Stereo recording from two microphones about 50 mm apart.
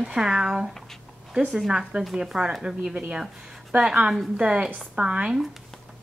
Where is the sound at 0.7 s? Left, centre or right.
Centre.